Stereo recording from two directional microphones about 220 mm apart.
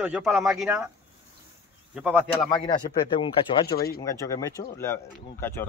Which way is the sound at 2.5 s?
20° left (ahead or behind).